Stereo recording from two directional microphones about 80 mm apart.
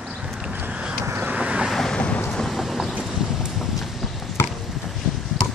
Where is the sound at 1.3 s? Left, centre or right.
Centre.